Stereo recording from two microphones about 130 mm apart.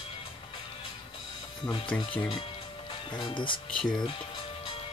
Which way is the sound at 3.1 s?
40° left (ahead or behind).